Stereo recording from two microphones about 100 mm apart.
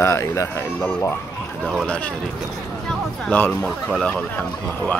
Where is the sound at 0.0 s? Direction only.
25° left (ahead or behind).